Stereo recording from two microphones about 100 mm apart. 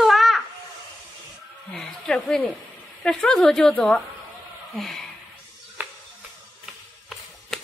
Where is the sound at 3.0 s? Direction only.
5° left (ahead or behind).